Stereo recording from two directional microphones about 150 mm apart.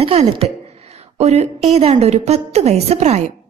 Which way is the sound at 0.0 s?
40° right (ahead or behind).